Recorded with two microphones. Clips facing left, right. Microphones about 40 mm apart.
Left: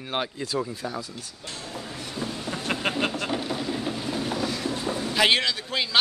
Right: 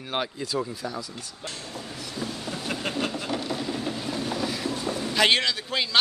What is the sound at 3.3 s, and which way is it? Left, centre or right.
Train, centre.